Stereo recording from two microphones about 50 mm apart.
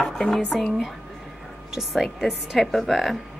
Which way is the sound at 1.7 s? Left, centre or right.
Centre.